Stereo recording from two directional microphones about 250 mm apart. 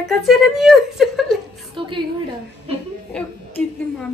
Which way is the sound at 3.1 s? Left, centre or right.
Centre.